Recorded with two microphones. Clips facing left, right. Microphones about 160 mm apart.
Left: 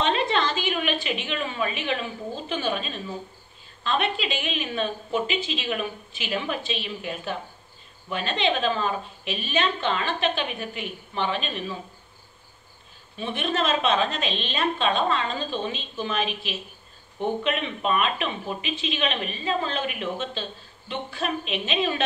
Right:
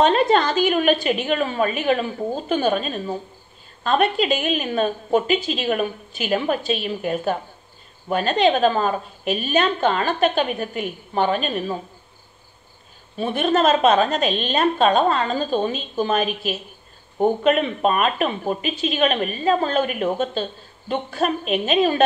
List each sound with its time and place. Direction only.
0.0 s a woman's voice: 45° right (ahead or behind)
13.2 s a woman's voice: 40° right (ahead or behind)